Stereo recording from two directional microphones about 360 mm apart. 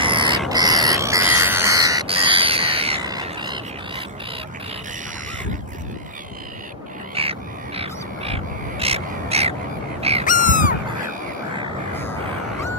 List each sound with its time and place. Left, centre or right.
0.0 s owl: centre
0.5 s bird: centre
7.2 s crow: centre
10.2 s crow: left